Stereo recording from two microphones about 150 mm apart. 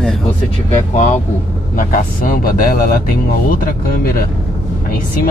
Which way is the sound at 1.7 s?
65° left (ahead or behind).